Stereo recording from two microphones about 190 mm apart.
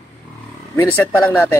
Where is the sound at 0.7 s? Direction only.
10° left (ahead or behind).